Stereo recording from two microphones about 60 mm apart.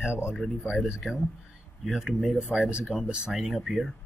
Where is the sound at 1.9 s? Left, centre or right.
Centre.